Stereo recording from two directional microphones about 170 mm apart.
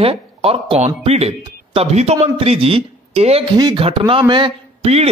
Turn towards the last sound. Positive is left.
turn(degrees=-35)  # may be behind; listen again after turning